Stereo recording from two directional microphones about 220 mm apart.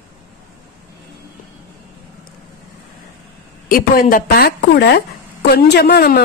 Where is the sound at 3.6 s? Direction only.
40° left (ahead or behind).